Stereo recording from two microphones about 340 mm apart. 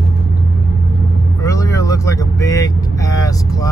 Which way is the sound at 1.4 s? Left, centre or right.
Centre.